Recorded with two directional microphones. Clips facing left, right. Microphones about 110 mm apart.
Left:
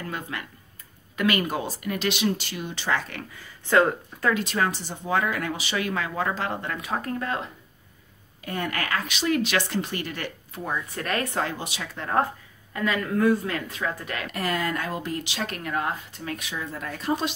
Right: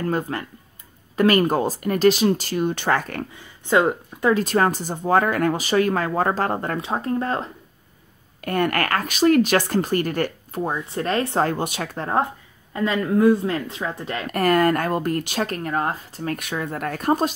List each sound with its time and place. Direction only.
0.0 s speech: 40° right (ahead or behind)
3.3 s speech: 20° right (ahead or behind)
4.3 s speech: 40° right (ahead or behind)
6.8 s speech: 25° right (ahead or behind)
8.4 s speech: 60° right (ahead or behind)
10.6 s speech: 25° right (ahead or behind)
11.4 s speech: 50° right (ahead or behind)
12.7 s speech: 25° right (ahead or behind)
14.3 s speech: 50° right (ahead or behind)
16.3 s speech: 55° right (ahead or behind)